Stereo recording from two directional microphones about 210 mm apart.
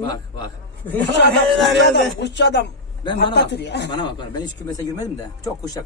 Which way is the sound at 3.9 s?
20° left (ahead or behind).